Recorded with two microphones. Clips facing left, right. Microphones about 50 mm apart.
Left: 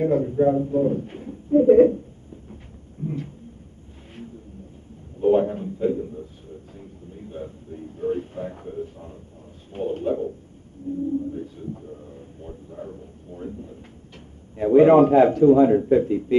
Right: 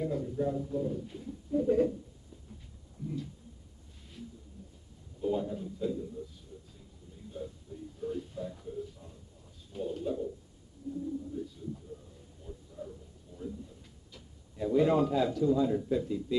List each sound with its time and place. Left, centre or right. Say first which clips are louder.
0.0 s a man's voice: left 13 dB; left
3.0 s a man's voice: left 8 dB; left
5.2 s a man's voice: left 13 dB; left
6.8 s a sound: left 12 dB; left
9.7 s a man's voice: left 10 dB; left
11.3 s a sound: left 6 dB; left
14.6 s a man's voice: left 13 dB; left